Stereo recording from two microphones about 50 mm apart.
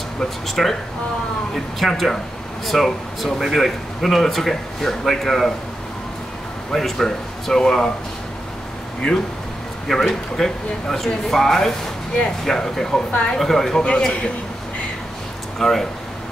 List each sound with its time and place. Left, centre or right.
0.2 s speech: centre
6.7 s speech: centre
9.8 s speech: centre
13.1 s speech: left
13.4 s speech: centre
13.8 s speech: centre
15.6 s speech: centre